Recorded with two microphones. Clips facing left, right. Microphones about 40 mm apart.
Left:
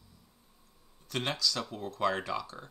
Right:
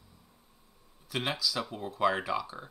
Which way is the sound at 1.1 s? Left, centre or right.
Centre.